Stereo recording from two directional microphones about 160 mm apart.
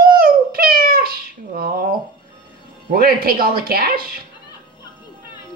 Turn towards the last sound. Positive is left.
turn(degrees=-70)  # may be behind; listen again after turning